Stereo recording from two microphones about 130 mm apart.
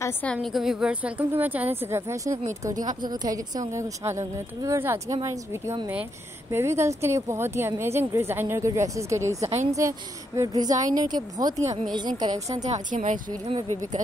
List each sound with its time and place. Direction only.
0.0 s a woman's voice: 10° left (ahead or behind)
0.4 s a woman's voice: centre (ahead or behind); by 12.4 s 35° right (ahead or behind)
12.5 s a woman's voice: 65° right (ahead or behind)